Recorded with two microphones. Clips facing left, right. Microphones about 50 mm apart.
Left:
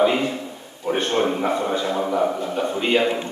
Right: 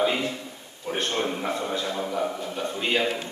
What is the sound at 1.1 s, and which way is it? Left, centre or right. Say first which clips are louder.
A man's voice: left 8 dB; centre.